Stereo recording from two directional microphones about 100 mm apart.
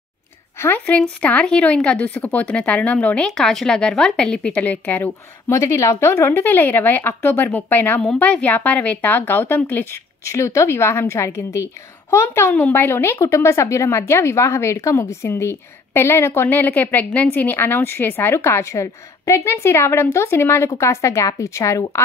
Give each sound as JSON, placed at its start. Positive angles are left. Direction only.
{"t": 0.6, "sound": "speech", "side_deg": 20}
{"t": 5.5, "sound": "speech", "side_deg": 30}